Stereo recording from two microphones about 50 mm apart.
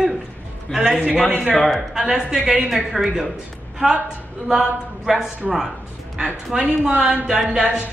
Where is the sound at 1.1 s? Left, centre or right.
Centre.